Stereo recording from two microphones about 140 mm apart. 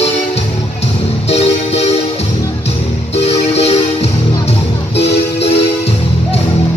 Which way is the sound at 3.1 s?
50° left (ahead or behind).